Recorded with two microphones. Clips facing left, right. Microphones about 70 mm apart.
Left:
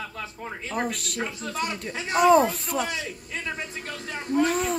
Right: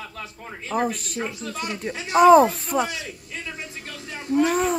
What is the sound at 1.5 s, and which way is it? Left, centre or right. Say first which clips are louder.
Speech: left 2 dB; right.